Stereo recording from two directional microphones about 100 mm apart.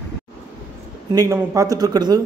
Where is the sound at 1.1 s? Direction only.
35° right (ahead or behind).